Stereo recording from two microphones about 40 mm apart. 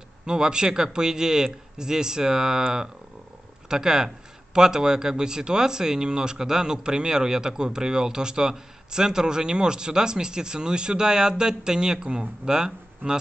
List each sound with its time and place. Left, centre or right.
0.3 s speech: centre